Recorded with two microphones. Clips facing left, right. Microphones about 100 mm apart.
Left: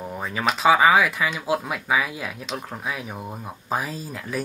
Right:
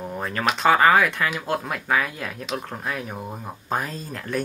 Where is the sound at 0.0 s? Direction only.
Centre (ahead or behind).